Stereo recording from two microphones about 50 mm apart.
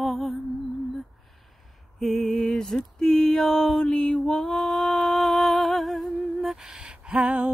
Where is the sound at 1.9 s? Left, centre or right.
Centre.